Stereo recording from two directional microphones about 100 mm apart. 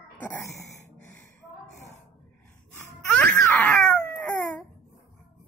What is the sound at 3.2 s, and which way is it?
Baby cry, 5° left (ahead or behind).